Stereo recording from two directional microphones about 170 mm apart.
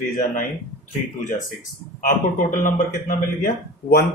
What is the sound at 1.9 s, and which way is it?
A man's voice, 55° left (ahead or behind).